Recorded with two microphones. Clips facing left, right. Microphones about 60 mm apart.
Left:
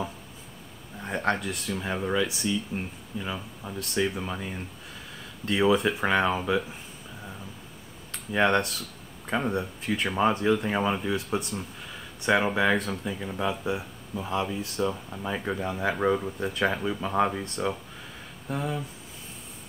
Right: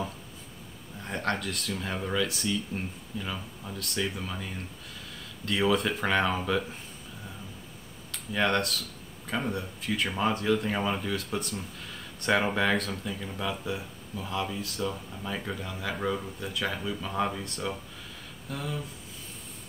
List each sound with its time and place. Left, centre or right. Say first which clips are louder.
1.0 s speech: left 3 dB; centre
5.6 s speech: left 3 dB; centre
8.1 s speech: left 4 dB; left
12.2 s speech: left 2 dB; centre; by 18.9 s left